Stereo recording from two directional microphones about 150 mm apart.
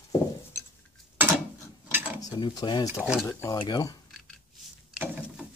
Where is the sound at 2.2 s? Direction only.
25° left (ahead or behind).